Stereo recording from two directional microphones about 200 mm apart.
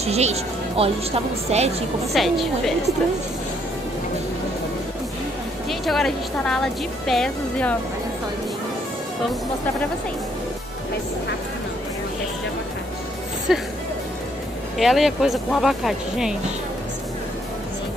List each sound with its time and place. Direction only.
0.0 s speech: 30° right (ahead or behind)
2.1 s a woman's voice: centre (ahead or behind)
5.7 s a woman's voice: centre (ahead or behind)
14.8 s a woman's voice: centre (ahead or behind)